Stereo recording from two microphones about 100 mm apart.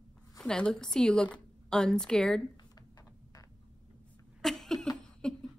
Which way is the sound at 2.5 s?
40° left (ahead or behind).